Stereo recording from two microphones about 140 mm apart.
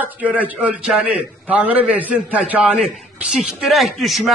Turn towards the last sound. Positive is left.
turn(degrees=0)  # may be behind; listen again after turning